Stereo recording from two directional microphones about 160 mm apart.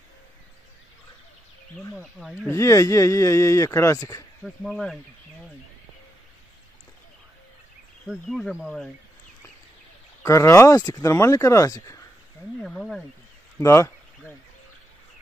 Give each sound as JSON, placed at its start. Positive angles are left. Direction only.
{"t": 2.0, "sound": "speech", "side_deg": 0}
{"t": 2.5, "sound": "speech", "side_deg": 20}
{"t": 4.6, "sound": "speech", "side_deg": 0}
{"t": 8.1, "sound": "speech", "side_deg": 0}
{"t": 10.2, "sound": "speech", "side_deg": 20}
{"t": 12.5, "sound": "speech", "side_deg": 5}
{"t": 13.6, "sound": "a sound", "side_deg": 15}